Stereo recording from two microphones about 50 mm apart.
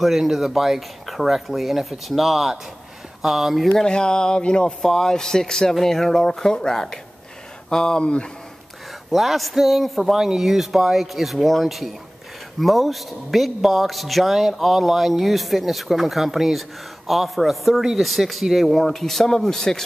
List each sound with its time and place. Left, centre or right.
0.0 s a man's voice: centre
3.7 s speech: centre
9.1 s a man's voice: centre